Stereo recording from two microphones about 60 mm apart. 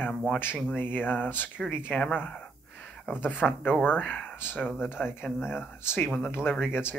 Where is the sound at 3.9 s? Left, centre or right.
Left.